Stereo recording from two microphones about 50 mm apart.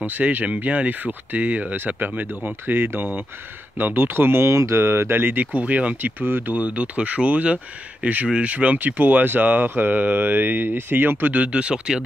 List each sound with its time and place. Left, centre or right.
0.0 s speech: right
4.5 s speech: right
4.7 s speech: right
6.2 s speech: right
6.5 s speech: right
11.3 s speech: right